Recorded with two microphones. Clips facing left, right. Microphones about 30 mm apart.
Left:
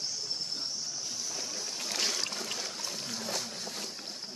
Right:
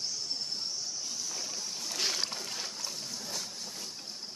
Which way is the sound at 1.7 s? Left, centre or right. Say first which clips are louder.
Left 2 dB; left.